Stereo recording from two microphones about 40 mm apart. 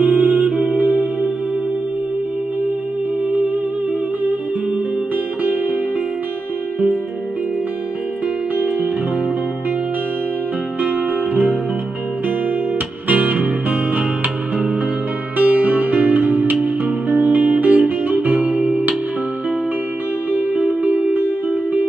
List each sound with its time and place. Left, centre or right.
0.0 s music: right
8.5 s music: right
12.7 s music: right
18.6 s music: right
20.3 s music: right